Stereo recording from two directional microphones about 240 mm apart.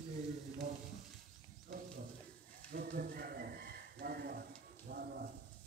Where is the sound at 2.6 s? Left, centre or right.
Right.